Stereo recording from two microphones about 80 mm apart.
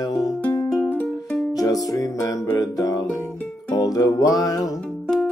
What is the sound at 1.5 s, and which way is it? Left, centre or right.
Music, left.